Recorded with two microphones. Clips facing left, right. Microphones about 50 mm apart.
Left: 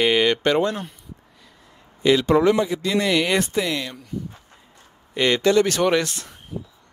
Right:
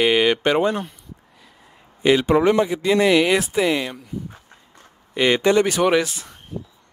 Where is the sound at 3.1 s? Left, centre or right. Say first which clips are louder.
Right 3 dB; centre.